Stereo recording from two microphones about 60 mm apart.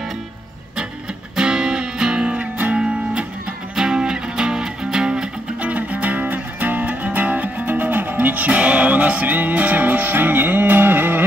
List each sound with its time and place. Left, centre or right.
1.3 s music: centre
3.7 s music: centre; by 11.2 s right